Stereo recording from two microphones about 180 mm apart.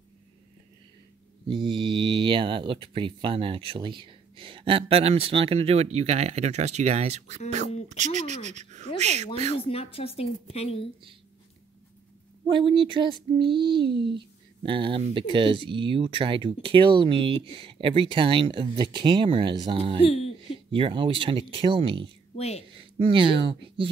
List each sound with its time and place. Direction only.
1.5 s speech: 30° right (ahead or behind)
9.7 s a woman's voice: 35° left (ahead or behind)
12.5 s speech: 30° right (ahead or behind)
13.8 s speech: 70° right (ahead or behind)
14.1 s speech: 30° right (ahead or behind)
20.0 s speech: 35° left (ahead or behind)
20.7 s speech: 30° right (ahead or behind)
22.3 s speech: 35° left (ahead or behind)
23.0 s speech: 30° right (ahead or behind)